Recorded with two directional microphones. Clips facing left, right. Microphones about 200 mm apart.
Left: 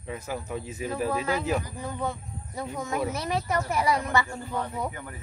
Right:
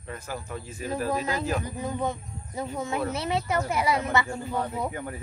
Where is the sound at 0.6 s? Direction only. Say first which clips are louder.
Right 2 dB; 15° left (ahead or behind).